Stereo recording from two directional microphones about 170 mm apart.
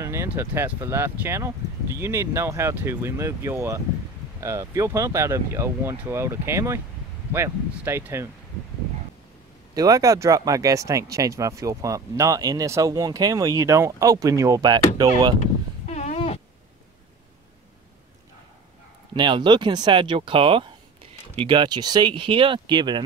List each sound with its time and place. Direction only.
0.0 s speech: 15° right (ahead or behind)
9.8 s speech: 20° right (ahead or behind)
15.9 s cat: 40° left (ahead or behind)
19.1 s speech: 25° right (ahead or behind)